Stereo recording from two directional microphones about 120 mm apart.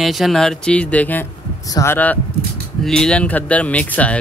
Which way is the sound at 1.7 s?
25° left (ahead or behind).